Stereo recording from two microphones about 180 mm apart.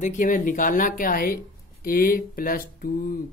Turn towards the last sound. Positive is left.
turn(degrees=50)  # may be behind; listen again after turning